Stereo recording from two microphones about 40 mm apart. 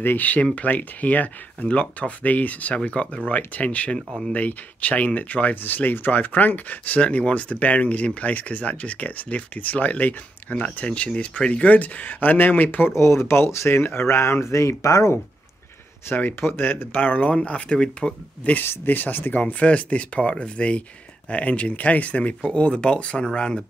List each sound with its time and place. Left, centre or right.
0.0 s speech: left
0.6 s speech: left
16.2 s speech: left
17.6 s speech: left
18.4 s speech: left
18.9 s speech: left
19.4 s speech: left